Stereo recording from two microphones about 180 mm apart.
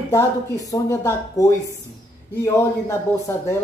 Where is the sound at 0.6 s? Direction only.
15° left (ahead or behind).